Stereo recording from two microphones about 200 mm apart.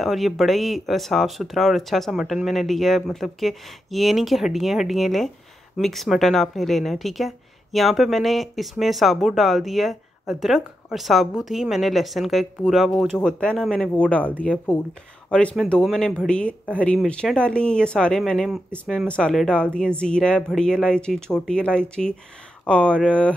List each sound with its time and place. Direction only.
0.0 s a woman's voice: centre (ahead or behind)